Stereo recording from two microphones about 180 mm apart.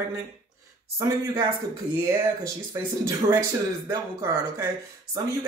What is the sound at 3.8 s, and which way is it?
Speech, 15° right (ahead or behind).